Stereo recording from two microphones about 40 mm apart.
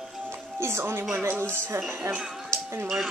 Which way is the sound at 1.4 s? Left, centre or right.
Right.